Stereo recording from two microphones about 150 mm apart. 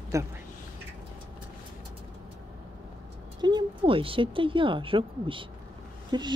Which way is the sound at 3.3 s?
30° right (ahead or behind).